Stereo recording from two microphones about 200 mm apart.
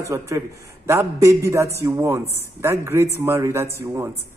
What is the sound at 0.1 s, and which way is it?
A man's voice, 15° right (ahead or behind).